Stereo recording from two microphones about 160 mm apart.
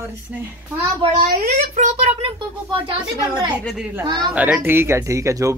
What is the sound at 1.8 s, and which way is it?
Speech, 35° right (ahead or behind).